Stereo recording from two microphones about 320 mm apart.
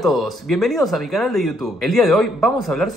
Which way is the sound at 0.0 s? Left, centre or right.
Centre.